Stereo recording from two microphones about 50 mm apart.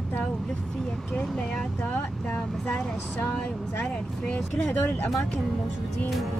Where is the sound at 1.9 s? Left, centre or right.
Left.